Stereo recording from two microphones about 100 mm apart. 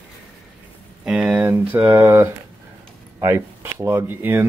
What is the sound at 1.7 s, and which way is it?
Speech, 20° right (ahead or behind).